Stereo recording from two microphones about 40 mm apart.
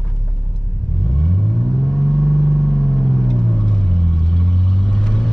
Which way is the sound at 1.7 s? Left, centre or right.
Centre.